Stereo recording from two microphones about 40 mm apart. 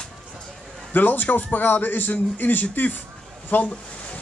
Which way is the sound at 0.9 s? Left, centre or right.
Left.